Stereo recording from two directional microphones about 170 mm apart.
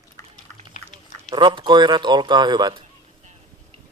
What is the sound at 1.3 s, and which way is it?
A man's voice, 30° right (ahead or behind).